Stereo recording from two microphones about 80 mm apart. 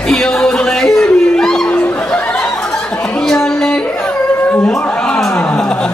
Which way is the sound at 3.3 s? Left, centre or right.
Centre.